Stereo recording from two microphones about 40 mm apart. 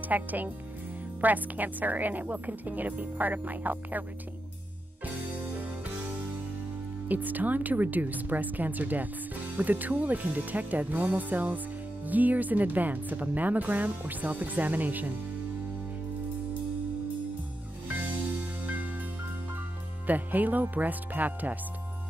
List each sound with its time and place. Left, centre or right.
0.1 s speech: right
7.1 s speech: right
18.7 s music: right
20.1 s speech: right